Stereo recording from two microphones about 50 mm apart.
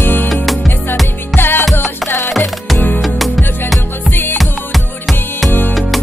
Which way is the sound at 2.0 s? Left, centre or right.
Left.